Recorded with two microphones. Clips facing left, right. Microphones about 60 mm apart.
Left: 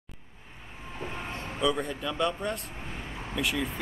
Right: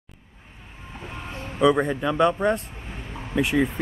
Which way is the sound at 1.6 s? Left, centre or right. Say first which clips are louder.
Right 9 dB; right.